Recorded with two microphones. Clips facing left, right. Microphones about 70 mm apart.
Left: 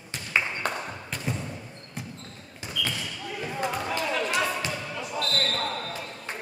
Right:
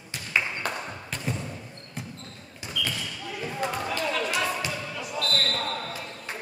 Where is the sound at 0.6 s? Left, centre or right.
Centre.